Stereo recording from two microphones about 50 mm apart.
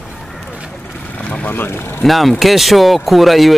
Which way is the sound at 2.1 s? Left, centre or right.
Centre.